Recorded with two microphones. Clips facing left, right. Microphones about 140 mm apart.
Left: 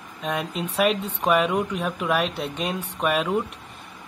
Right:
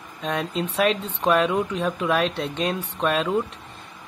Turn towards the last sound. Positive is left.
turn(degrees=10)  # may be behind; listen again after turning